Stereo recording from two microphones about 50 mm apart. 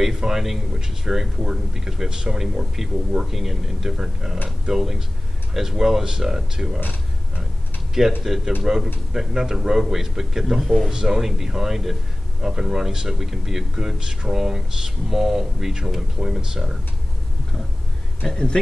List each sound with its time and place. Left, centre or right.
0.0 s a man's voice: centre
8.2 s a man's voice: centre
18.2 s speech: centre